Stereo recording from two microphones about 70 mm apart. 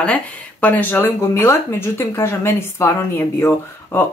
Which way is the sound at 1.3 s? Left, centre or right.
Left.